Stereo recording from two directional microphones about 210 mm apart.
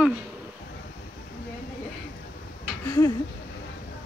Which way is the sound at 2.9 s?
20° left (ahead or behind).